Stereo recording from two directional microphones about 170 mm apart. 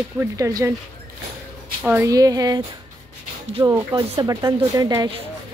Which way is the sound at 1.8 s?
15° right (ahead or behind).